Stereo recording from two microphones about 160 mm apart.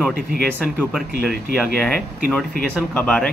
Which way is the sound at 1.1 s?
75° right (ahead or behind).